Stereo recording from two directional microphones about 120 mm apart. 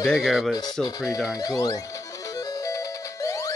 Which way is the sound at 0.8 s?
30° left (ahead or behind).